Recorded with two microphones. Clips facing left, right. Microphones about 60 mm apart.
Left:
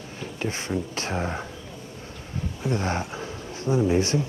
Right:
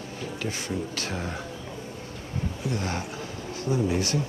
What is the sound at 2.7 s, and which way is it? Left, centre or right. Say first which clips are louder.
Speech: left 7 dB; left.